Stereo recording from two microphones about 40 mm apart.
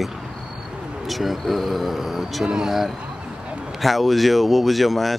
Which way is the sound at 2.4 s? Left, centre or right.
Centre.